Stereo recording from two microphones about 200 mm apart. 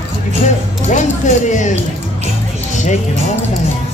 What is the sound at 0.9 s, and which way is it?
Music, 35° left (ahead or behind).